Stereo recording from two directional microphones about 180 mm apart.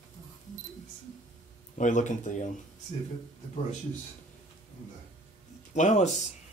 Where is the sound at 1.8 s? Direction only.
45° left (ahead or behind).